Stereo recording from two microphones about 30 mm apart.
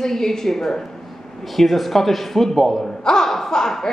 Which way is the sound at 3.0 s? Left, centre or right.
Left.